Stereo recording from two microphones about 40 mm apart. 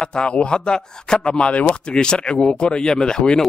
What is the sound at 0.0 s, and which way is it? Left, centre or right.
Speech, left.